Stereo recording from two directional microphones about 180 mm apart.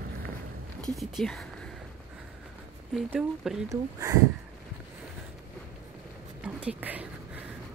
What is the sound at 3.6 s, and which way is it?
Speech, 15° right (ahead or behind).